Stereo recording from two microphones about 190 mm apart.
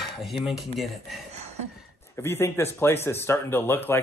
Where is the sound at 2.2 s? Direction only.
15° left (ahead or behind).